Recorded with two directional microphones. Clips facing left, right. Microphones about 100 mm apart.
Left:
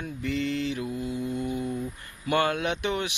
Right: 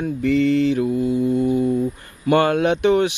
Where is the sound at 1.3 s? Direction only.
35° right (ahead or behind).